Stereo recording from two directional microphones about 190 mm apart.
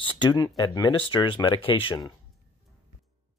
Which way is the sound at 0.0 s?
25° left (ahead or behind).